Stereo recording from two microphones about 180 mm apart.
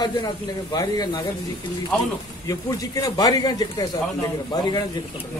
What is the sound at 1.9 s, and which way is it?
Speech, 5° left (ahead or behind).